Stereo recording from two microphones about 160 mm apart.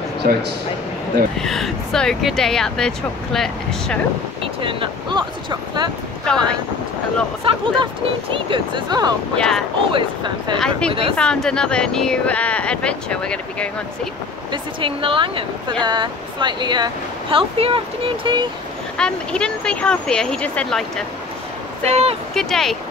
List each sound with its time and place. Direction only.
0.2 s speech: 70° right (ahead or behind)
1.4 s speech: centre (ahead or behind)
4.4 s speech: 35° right (ahead or behind)
6.2 s speech: 5° left (ahead or behind)
7.4 s speech: 30° right (ahead or behind)
11.1 s speech: 5° left (ahead or behind)
14.5 s speech: 35° right (ahead or behind)
18.9 s speech: 5° left (ahead or behind)
21.8 s speech: 40° right (ahead or behind)
22.3 s speech: centre (ahead or behind)